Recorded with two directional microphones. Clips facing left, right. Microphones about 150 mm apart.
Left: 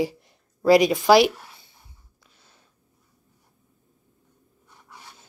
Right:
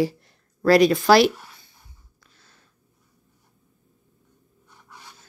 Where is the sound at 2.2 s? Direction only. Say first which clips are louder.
Even; 15° left (ahead or behind).